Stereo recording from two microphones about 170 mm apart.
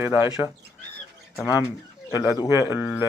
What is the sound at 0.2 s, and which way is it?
Speech, 15° right (ahead or behind).